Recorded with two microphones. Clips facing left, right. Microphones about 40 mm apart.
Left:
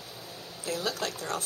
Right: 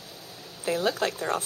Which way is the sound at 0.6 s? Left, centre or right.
Right.